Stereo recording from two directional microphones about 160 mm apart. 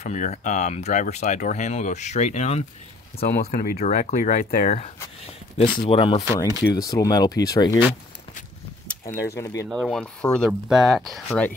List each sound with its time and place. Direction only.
0.0 s speech: 45° left (ahead or behind)
3.2 s speech: 70° left (ahead or behind)
3.8 s speech: 50° left (ahead or behind)
4.6 s speech: 40° left (ahead or behind)
5.8 s speech: 30° left (ahead or behind)
6.8 s speech: 20° left (ahead or behind)
9.0 s speech: 20° left (ahead or behind)
9.7 s speech: 5° left (ahead or behind)